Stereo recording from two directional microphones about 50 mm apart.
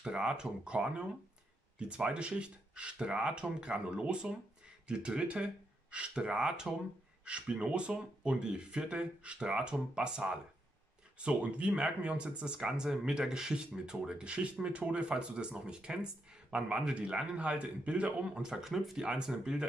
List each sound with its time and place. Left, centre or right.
0.0 s speech: centre
18.6 s speech: centre
18.9 s speech: centre